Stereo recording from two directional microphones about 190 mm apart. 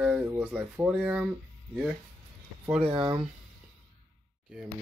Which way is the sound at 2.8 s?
25° right (ahead or behind).